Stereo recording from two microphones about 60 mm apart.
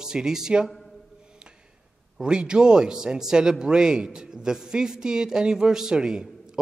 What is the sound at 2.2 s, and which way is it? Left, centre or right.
A man's voice, centre.